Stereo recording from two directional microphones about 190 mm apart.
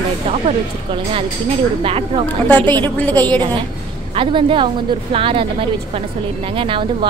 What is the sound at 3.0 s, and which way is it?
Speech, 10° left (ahead or behind).